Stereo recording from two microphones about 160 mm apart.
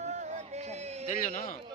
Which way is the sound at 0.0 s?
50° right (ahead or behind).